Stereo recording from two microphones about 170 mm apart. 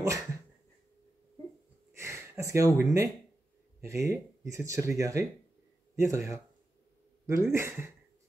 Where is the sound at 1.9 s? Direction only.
15° right (ahead or behind).